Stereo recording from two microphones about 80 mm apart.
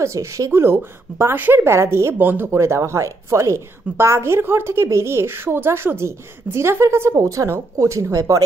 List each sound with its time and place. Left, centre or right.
0.0 s a woman's voice: right
2.5 s a woman's voice: right